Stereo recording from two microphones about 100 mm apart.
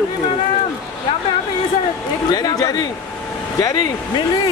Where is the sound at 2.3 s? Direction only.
40° left (ahead or behind).